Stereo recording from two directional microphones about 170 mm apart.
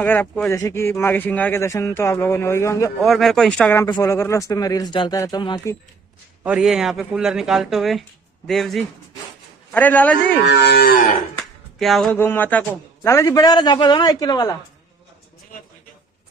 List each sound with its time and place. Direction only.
0.0 s speech: 10° left (ahead or behind)
3.0 s speech: centre (ahead or behind)
3.7 s a man's voice: 20° left (ahead or behind)
6.4 s speech: 5° right (ahead or behind)
10.4 s moo: 80° left
11.8 s a man's voice: centre (ahead or behind); by 14.6 s 20° left (ahead or behind)